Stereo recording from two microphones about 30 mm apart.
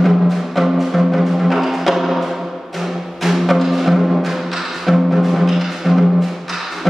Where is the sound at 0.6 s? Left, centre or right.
Centre.